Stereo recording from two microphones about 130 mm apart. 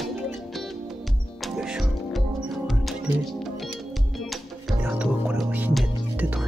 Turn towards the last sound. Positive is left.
turn(degrees=-10)  # may be behind; listen again after turning